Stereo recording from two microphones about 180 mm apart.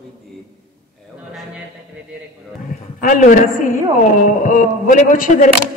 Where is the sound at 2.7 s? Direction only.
50° left (ahead or behind).